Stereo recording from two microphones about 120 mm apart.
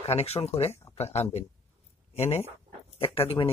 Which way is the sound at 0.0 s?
60° left (ahead or behind).